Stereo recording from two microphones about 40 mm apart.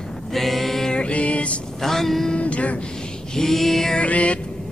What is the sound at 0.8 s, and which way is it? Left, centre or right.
Music, left.